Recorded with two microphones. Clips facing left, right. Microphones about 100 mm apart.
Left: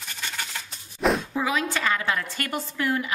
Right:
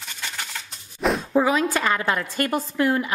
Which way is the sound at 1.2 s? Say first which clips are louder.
Right 6 dB; 40° right (ahead or behind).